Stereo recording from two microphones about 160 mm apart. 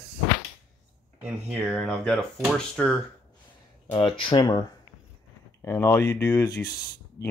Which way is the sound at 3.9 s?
35° left (ahead or behind).